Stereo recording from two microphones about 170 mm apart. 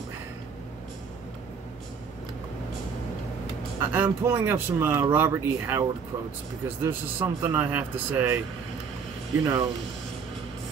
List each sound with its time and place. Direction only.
3.8 s speech: 10° right (ahead or behind)
9.4 s speech: 20° right (ahead or behind)